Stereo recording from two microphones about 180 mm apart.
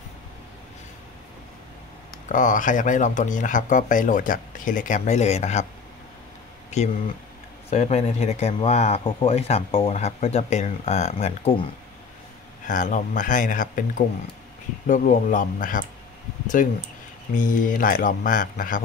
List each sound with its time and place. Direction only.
2.2 s speech: 45° left (ahead or behind)
6.7 s speech: 40° left (ahead or behind)
12.6 s speech: 45° left (ahead or behind)